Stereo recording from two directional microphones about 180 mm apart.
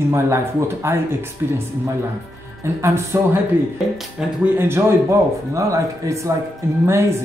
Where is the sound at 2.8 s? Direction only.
15° right (ahead or behind).